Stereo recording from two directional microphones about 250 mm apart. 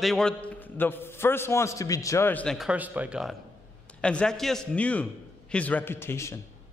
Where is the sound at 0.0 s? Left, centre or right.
Centre.